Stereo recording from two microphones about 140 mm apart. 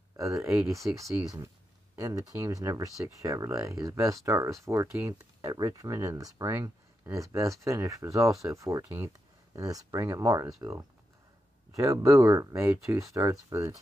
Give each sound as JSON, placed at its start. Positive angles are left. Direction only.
{"t": 0.2, "sound": "speech", "side_deg": -20}